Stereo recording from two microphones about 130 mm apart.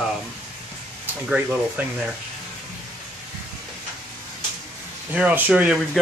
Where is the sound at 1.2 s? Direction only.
10° right (ahead or behind).